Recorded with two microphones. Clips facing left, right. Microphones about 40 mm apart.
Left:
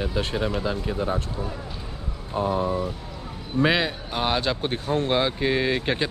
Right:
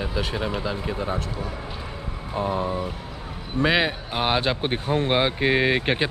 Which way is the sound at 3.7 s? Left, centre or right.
Centre.